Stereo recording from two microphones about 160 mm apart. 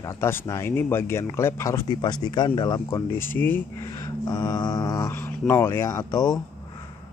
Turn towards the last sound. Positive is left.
turn(degrees=20)  # may be behind; listen again after turning